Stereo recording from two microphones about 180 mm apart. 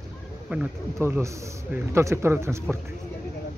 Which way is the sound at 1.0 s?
15° right (ahead or behind).